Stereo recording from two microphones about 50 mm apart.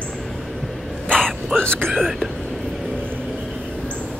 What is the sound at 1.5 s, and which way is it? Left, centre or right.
Speech, centre.